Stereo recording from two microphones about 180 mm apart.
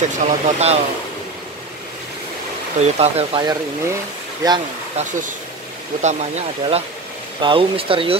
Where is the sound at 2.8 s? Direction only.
35° right (ahead or behind).